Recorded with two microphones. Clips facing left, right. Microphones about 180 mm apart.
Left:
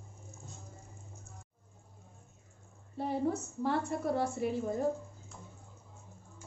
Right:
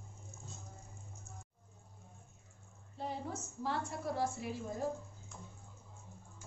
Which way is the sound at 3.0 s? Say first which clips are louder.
Left 9 dB; 60° left (ahead or behind).